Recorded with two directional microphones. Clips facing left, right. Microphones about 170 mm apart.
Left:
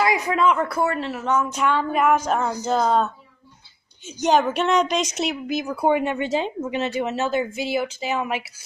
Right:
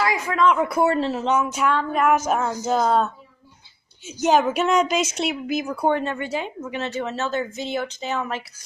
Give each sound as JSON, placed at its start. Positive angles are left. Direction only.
{"t": 0.0, "sound": "speech", "side_deg": 15}
{"t": 0.6, "sound": "speech", "side_deg": -15}
{"t": 0.9, "sound": "speech", "side_deg": -25}
{"t": 1.4, "sound": "speech", "side_deg": -5}
{"t": 1.8, "sound": "speech", "side_deg": 5}
{"t": 2.1, "sound": "a woman's voice", "side_deg": -5}